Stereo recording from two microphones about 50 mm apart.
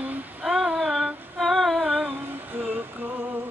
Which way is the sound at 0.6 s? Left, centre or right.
Right.